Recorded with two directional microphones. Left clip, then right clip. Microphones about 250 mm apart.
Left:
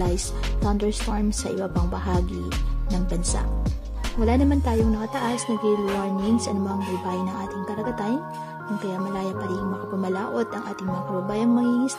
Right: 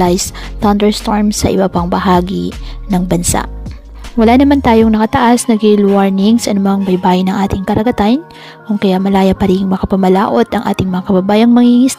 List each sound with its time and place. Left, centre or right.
0.0 s a woman's voice: right